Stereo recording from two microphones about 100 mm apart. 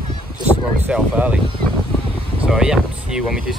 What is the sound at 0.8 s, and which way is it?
Speech, 15° right (ahead or behind).